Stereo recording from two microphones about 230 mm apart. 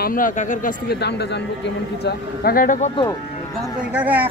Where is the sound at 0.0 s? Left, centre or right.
Left.